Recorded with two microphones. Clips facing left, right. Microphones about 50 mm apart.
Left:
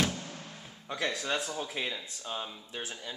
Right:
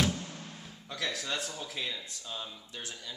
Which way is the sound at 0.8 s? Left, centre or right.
Centre.